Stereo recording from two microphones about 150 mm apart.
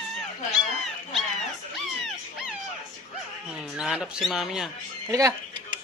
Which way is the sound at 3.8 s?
5° right (ahead or behind).